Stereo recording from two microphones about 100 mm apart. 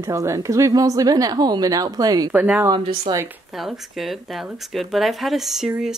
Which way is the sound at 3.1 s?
50° right (ahead or behind).